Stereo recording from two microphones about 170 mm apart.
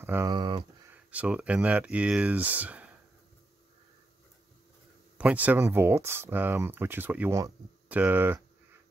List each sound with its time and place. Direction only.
0.0 s speech: 15° right (ahead or behind)
0.9 s speech: 10° right (ahead or behind)
5.1 s speech: 10° right (ahead or behind)